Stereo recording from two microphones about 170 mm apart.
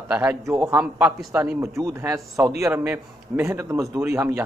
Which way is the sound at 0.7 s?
5° right (ahead or behind).